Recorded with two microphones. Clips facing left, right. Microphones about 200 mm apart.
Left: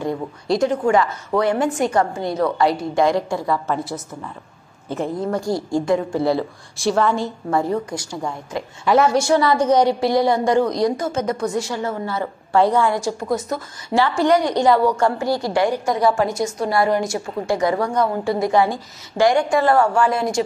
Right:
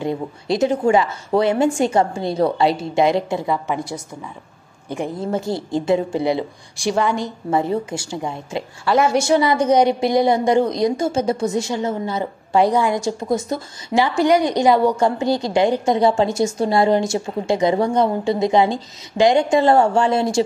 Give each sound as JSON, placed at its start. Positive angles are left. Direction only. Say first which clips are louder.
{"t": 0.0, "sound": "a woman's voice", "louder": "right 1 dB", "side_deg": -25}
{"t": 4.8, "sound": "a woman's voice", "louder": "left 1 dB", "side_deg": -15}